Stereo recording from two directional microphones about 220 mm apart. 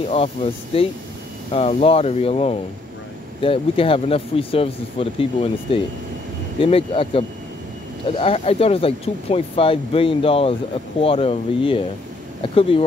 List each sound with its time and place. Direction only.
0.1 s speech: 25° left (ahead or behind)